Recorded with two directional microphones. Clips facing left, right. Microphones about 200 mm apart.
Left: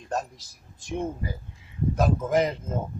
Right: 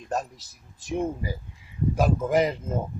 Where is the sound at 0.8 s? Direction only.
5° right (ahead or behind).